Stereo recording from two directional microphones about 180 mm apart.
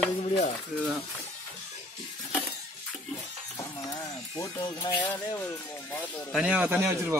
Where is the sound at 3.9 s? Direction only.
20° left (ahead or behind).